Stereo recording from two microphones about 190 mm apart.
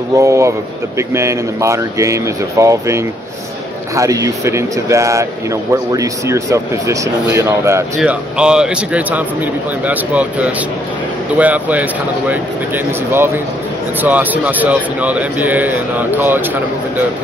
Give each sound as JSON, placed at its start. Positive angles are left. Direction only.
{"t": 0.1, "sound": "speech", "side_deg": -15}